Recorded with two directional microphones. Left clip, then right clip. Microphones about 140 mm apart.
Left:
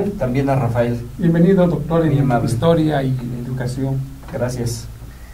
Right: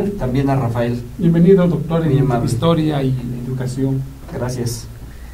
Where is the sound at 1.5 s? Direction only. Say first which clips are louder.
Right 4 dB; 15° right (ahead or behind).